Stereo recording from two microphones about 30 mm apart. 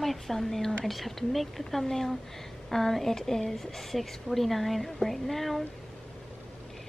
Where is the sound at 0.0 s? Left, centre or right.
Centre.